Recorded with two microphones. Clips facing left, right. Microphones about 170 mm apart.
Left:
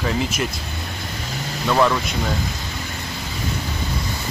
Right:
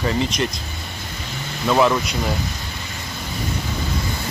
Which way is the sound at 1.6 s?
5° right (ahead or behind).